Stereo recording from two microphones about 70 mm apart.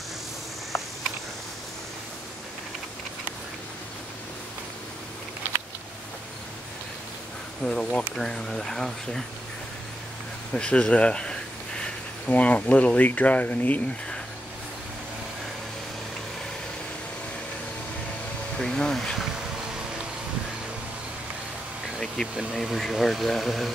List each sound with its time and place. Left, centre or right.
7.6 s speech: centre
10.5 s speech: centre
18.6 s speech: centre
22.0 s vehicle: centre
22.6 s speech: centre